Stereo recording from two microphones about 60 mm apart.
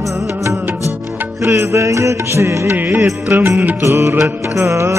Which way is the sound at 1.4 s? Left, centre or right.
Right.